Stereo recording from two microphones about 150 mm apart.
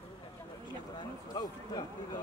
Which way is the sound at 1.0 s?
30° left (ahead or behind).